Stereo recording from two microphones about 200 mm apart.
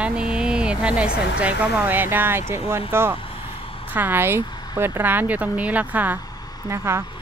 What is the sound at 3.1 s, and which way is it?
Vehicle, 25° left (ahead or behind).